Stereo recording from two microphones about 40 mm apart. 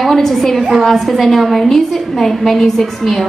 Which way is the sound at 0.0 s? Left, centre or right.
Centre.